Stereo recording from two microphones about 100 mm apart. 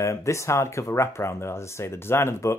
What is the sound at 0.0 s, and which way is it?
Speech, 30° left (ahead or behind).